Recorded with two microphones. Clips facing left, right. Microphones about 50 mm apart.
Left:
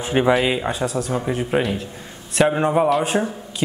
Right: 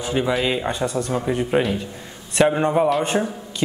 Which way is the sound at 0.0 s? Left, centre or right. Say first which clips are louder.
Left 3 dB; left.